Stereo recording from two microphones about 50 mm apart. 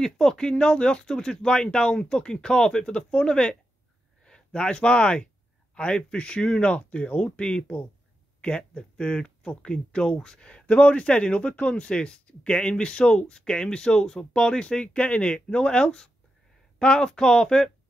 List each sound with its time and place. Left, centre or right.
0.0 s speech: centre